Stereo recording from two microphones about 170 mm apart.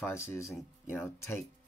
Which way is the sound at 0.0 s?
15° left (ahead or behind).